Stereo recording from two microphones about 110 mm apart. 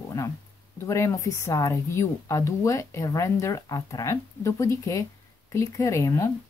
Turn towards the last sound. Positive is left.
turn(degrees=25)  # may be behind; listen again after turning